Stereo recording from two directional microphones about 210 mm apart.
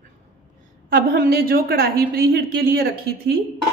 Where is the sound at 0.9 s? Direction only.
45° right (ahead or behind).